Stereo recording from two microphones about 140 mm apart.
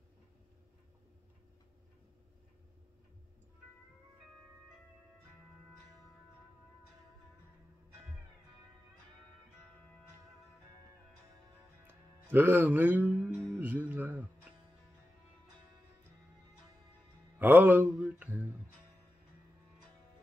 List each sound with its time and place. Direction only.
11.9 s music: 15° right (ahead or behind)
13.6 s speech: 10° right (ahead or behind)
17.4 s speech: 15° right (ahead or behind)